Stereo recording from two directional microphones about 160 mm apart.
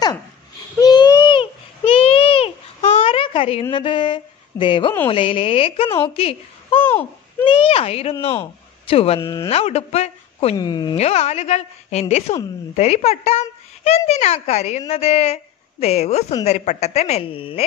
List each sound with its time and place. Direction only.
0.7 s babbling: 25° left (ahead or behind)
3.0 s a sound: 35° left (ahead or behind)
5.1 s a woman's voice: 35° left (ahead or behind)
6.8 s a sound: 10° left (ahead or behind)
7.4 s a woman's voice: 35° left (ahead or behind)
9.2 s speech: 20° left (ahead or behind)
9.5 s a woman's voice: 40° left (ahead or behind)
10.6 s speech: 25° left (ahead or behind)
11.0 s a woman's voice: 40° left (ahead or behind)